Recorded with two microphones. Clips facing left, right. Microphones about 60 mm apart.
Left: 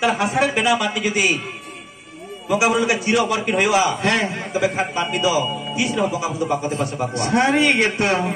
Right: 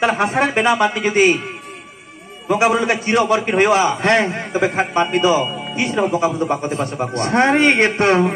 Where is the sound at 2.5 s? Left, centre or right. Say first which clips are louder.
Right 2 dB; right.